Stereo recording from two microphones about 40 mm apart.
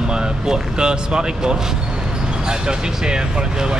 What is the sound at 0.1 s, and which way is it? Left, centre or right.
Speech, centre.